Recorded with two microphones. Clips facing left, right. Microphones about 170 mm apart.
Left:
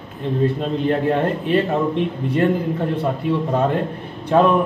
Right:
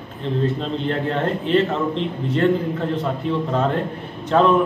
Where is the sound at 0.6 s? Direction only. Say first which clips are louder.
Left 3 dB; 10° left (ahead or behind).